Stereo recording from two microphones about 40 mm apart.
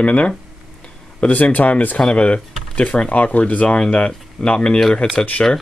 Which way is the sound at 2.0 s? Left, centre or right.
Left.